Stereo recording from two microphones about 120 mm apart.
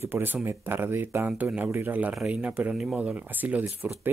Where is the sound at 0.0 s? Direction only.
15° right (ahead or behind).